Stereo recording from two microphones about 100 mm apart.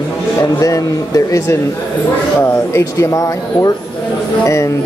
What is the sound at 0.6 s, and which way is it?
Speech, 35° left (ahead or behind).